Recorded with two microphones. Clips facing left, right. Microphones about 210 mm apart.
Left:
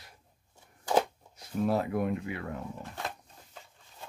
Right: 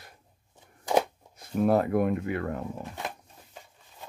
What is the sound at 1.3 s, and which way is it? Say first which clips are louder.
Speech: right 5 dB; 55° right (ahead or behind).